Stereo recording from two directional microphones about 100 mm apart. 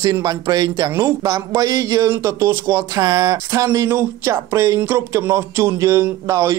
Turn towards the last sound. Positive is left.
turn(degrees=-30)  # may be behind; listen again after turning